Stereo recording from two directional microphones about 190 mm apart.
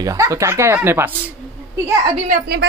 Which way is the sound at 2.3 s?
60° right (ahead or behind).